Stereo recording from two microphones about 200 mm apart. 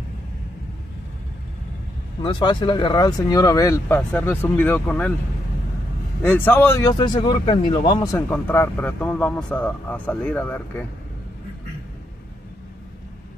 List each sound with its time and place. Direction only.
2.2 s speech: 25° left (ahead or behind)
6.2 s speech: 10° left (ahead or behind)